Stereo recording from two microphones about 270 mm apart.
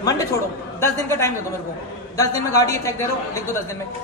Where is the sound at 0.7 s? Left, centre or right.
Centre.